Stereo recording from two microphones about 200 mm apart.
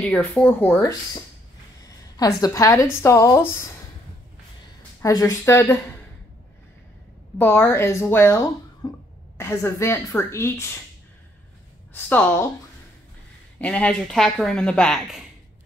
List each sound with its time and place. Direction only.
0.0 s a woman's voice: 5° left (ahead or behind)
5.0 s a woman's voice: 15° left (ahead or behind)
7.3 s a woman's voice: 10° left (ahead or behind)
8.8 s cough: 20° left (ahead or behind)
9.4 s a woman's voice: 10° left (ahead or behind)
11.9 s a woman's voice: 10° left (ahead or behind)
13.6 s speech: 5° left (ahead or behind)